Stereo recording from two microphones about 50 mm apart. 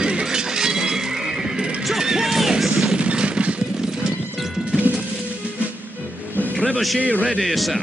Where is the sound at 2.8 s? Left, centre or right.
Right.